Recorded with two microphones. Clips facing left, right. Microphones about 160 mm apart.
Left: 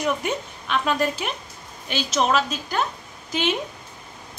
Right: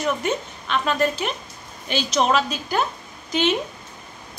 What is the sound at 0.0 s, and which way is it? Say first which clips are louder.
A woman's voice: right 1 dB; 10° left (ahead or behind).